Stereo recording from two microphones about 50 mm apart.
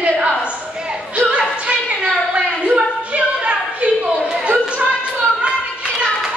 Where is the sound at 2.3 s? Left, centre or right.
Right.